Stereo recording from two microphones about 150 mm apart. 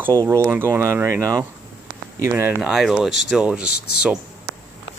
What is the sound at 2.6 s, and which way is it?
Speech, 5° right (ahead or behind).